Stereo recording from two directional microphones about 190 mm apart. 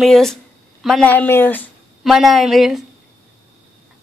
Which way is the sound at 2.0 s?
Centre (ahead or behind).